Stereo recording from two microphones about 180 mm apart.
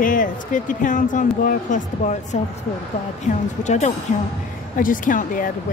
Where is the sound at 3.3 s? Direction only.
40° left (ahead or behind).